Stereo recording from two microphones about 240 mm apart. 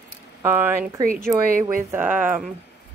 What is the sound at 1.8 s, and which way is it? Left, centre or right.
Speech, centre.